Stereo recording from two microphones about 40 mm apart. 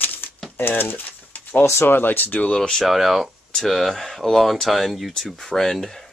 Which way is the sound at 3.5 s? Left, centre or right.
Centre.